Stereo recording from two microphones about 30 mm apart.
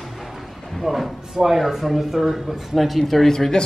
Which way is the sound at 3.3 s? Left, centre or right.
Centre.